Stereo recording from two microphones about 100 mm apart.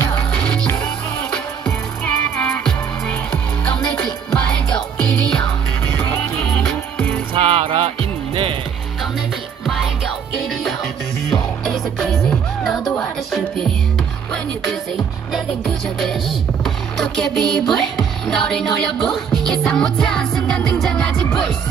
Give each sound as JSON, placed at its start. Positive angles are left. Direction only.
{"t": 0.1, "sound": "music", "side_deg": 10}
{"t": 7.3, "sound": "music", "side_deg": -60}
{"t": 9.7, "sound": "music", "side_deg": 0}
{"t": 11.6, "sound": "music", "side_deg": 0}
{"t": 15.3, "sound": "music", "side_deg": 0}